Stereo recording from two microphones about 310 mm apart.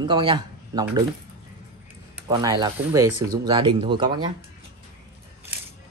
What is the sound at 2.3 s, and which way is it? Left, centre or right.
Speech, centre.